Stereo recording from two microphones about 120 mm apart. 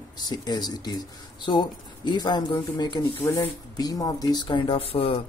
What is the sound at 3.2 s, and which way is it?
Speech, 20° left (ahead or behind).